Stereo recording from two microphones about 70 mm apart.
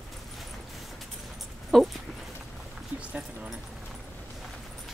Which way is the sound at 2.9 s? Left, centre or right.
Centre.